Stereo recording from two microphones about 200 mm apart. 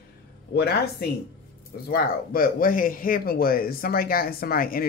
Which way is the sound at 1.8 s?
50° left (ahead or behind).